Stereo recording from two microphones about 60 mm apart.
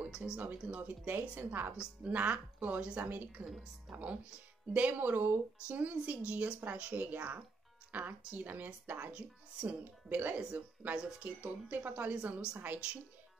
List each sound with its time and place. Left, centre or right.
0.0 s speech: centre
0.4 s speech: right
5.7 s speech: right
12.4 s a woman's voice: centre